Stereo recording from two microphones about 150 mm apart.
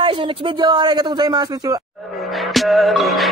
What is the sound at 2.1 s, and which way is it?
Music, centre (ahead or behind).